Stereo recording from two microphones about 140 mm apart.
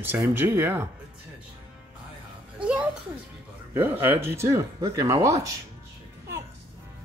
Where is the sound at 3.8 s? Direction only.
15° right (ahead or behind).